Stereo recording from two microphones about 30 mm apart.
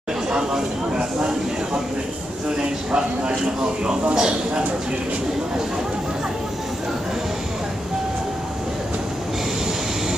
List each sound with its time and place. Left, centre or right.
0.3 s speech: right
2.5 s a man's voice: right